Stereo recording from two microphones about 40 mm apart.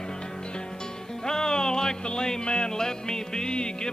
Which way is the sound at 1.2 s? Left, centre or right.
Centre.